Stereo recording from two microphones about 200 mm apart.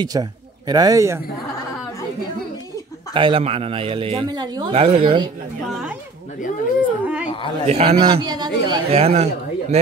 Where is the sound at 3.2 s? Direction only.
25° right (ahead or behind).